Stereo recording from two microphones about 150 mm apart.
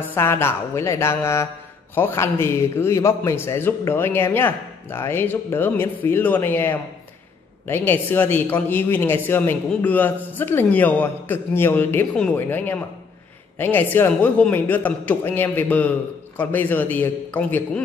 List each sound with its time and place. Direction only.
0.1 s speech: 15° left (ahead or behind)